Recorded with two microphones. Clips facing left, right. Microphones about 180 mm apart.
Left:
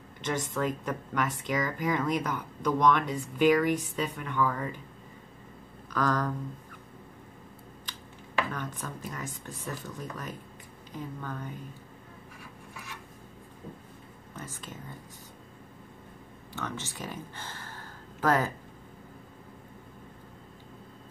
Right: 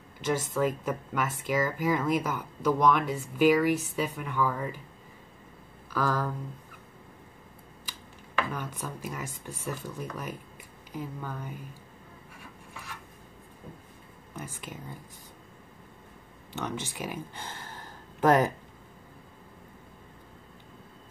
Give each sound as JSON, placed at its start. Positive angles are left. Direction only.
{"t": 0.2, "sound": "speech", "side_deg": -5}
{"t": 5.9, "sound": "speech", "side_deg": -5}
{"t": 7.9, "sound": "finger snapping", "side_deg": -10}
{"t": 8.5, "sound": "speech", "side_deg": -10}
{"t": 14.3, "sound": "speech", "side_deg": -10}
{"t": 16.5, "sound": "speech", "side_deg": -15}